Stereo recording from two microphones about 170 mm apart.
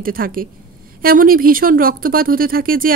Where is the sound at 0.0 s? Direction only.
55° right (ahead or behind).